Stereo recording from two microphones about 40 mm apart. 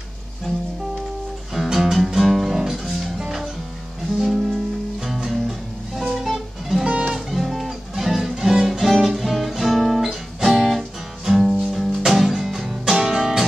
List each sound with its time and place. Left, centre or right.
1.5 s music: centre
4.2 s music: centre
6.9 s music: right
7.2 s guitar: centre
7.9 s music: centre
11.7 s music: centre